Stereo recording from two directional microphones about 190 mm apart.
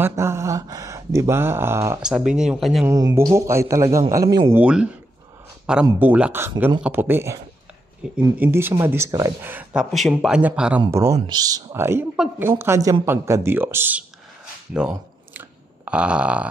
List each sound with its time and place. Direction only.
0.0 s speech: 15° right (ahead or behind)
2.9 s speech: 20° right (ahead or behind)
5.9 s speech: 10° right (ahead or behind)
14.7 s chewing: 10° right (ahead or behind)